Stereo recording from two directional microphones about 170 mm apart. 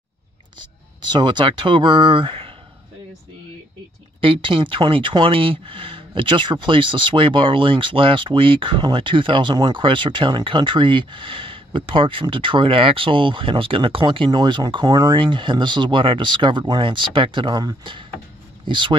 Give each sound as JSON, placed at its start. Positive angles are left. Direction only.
{"t": 0.6, "sound": "speech", "side_deg": -25}
{"t": 4.2, "sound": "speech", "side_deg": -30}